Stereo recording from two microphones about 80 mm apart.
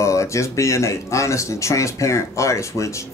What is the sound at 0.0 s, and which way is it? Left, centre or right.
Speech, left.